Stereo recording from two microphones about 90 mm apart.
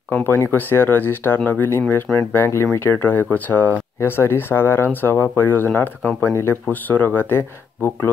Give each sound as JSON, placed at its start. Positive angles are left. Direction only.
{"t": 0.3, "sound": "speech", "side_deg": 25}